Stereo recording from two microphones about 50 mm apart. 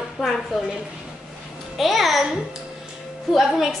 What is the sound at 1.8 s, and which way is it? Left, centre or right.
Speech, centre.